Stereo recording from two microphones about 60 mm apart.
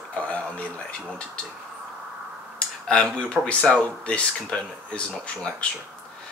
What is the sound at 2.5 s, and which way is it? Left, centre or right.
Speech, centre.